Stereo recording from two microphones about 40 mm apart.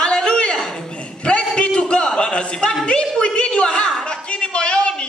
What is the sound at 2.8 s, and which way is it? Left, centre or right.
Speech, left.